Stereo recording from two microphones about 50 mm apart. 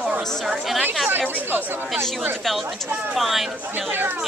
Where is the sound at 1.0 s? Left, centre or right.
Right.